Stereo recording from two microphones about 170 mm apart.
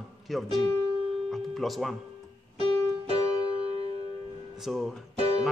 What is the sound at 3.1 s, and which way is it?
Music, 30° left (ahead or behind).